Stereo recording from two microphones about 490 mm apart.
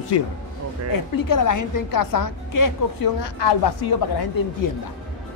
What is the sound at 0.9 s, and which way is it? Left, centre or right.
A woman's voice, left.